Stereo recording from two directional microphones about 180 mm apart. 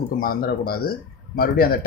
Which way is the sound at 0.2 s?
55° left (ahead or behind).